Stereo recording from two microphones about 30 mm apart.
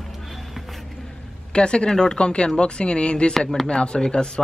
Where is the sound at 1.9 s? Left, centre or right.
Left.